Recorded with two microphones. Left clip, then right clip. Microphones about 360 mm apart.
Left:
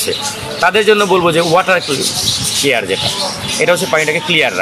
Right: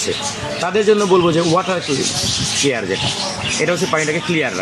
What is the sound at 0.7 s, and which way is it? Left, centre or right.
A man's voice, left.